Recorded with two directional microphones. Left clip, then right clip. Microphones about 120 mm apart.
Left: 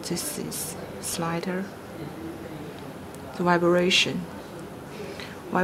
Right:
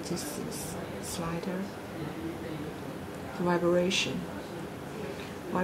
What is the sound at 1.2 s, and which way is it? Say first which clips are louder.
Speech: left 8 dB; 45° left (ahead or behind).